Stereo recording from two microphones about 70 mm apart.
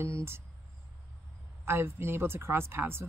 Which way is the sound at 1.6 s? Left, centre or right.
Right.